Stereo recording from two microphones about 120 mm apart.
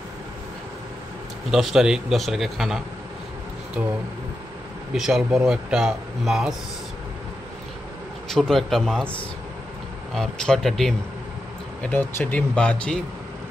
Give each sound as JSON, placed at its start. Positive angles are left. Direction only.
{"t": 1.5, "sound": "speech", "side_deg": -5}
{"t": 3.8, "sound": "speech", "side_deg": -20}
{"t": 4.9, "sound": "speech", "side_deg": -5}
{"t": 8.3, "sound": "speech", "side_deg": 0}
{"t": 10.1, "sound": "speech", "side_deg": 5}
{"t": 11.8, "sound": "speech", "side_deg": 15}